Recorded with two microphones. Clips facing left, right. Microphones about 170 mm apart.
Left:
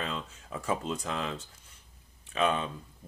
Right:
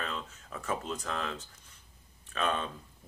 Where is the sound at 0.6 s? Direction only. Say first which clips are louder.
Left 3 dB; 10° left (ahead or behind).